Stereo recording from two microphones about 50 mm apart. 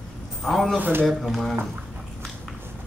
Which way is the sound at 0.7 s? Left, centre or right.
Right.